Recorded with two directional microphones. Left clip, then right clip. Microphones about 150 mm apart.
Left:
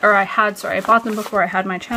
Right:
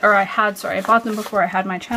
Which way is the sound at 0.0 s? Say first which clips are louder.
Left 1 dB; 15° left (ahead or behind).